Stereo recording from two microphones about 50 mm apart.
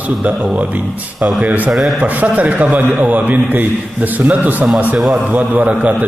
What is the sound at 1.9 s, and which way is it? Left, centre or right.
A man's voice, right.